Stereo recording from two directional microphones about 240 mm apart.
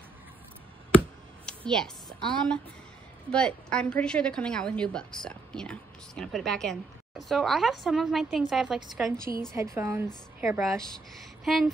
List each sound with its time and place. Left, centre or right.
1.4 s a woman's voice: centre